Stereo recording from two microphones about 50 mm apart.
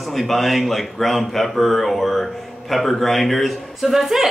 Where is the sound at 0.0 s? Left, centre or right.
Centre.